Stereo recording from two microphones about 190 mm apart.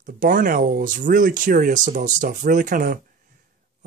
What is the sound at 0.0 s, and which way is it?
Speech, 45° right (ahead or behind).